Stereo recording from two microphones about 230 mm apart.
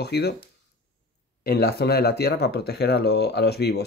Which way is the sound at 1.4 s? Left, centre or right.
Left.